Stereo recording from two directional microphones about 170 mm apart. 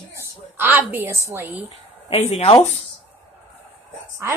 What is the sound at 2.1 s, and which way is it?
Speech, 35° left (ahead or behind).